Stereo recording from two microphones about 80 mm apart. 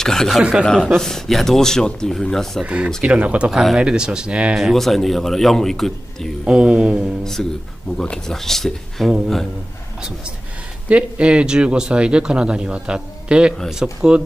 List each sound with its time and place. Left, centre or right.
0.0 s speech: centre
0.4 s speech: centre
0.9 s a man's voice: centre
2.6 s speech: centre
3.5 s speech: centre
4.6 s a man's voice: centre
6.4 s speech: centre
7.4 s a man's voice: centre
10.9 s speech: centre